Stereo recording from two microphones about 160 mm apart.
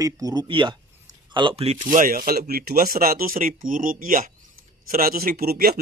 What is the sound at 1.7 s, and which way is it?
Speech, 55° right (ahead or behind).